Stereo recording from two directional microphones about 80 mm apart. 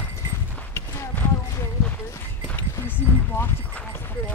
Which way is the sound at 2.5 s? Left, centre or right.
Left.